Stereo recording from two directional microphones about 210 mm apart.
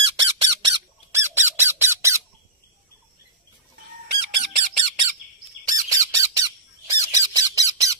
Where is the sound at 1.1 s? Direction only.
10° right (ahead or behind).